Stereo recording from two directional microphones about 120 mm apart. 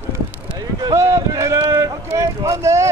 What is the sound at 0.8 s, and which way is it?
Speech, 25° right (ahead or behind).